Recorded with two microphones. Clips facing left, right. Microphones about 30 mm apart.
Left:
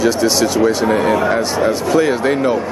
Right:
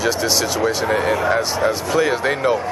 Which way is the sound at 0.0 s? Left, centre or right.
Centre.